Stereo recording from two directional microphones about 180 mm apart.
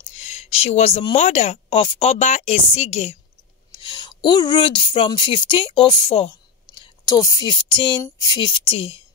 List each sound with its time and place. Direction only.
0.1 s speech: 35° left (ahead or behind)
3.7 s speech: 25° left (ahead or behind)